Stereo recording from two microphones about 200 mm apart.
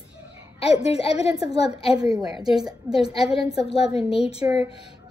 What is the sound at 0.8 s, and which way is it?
A woman's voice, 30° left (ahead or behind).